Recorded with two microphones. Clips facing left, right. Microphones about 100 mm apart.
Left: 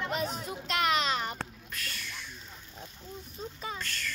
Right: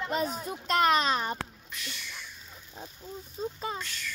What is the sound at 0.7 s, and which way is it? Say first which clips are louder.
Speech: right 4 dB; 40° right (ahead or behind).